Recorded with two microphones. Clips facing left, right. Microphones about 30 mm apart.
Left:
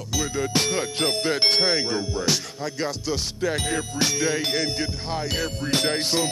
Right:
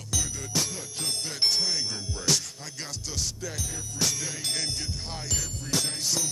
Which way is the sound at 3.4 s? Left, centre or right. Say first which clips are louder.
Left 11 dB; left.